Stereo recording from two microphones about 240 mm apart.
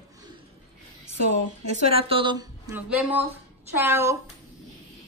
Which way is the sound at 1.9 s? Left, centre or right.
Right.